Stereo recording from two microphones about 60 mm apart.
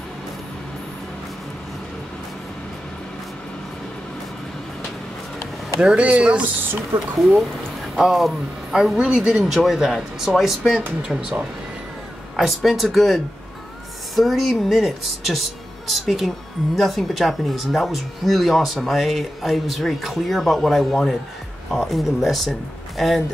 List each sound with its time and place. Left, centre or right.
5.9 s speech: right
6.9 s speech: right
8.0 s speech: centre
12.4 s speech: centre